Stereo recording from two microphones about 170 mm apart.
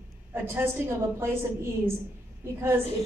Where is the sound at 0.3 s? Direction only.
15° right (ahead or behind).